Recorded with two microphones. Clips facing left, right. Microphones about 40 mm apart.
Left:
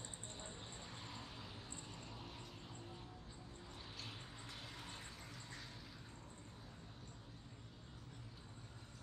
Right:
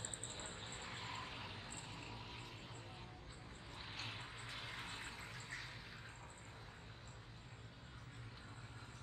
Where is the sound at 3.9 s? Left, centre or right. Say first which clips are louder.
Right 5 dB; right.